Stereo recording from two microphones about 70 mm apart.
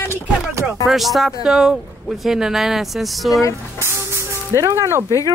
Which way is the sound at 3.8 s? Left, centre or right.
Right.